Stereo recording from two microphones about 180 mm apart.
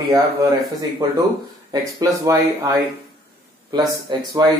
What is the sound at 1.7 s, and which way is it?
Speech, 20° right (ahead or behind).